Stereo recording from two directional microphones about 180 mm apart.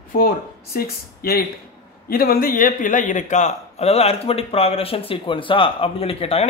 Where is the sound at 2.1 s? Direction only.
55° left (ahead or behind).